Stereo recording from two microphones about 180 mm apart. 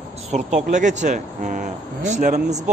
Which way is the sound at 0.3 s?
40° right (ahead or behind).